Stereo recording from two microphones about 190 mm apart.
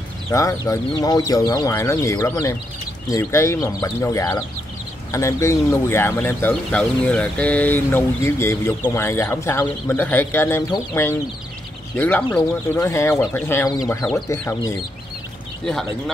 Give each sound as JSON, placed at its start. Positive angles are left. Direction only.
{"t": 0.3, "sound": "speech", "side_deg": 15}